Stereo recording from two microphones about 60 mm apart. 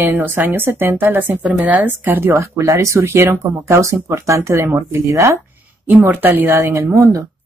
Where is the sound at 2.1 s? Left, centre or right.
Right.